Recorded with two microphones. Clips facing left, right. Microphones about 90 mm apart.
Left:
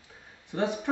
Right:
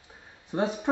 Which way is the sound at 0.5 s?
20° right (ahead or behind).